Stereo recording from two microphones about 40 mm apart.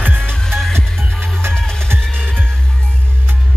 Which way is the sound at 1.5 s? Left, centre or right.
Left.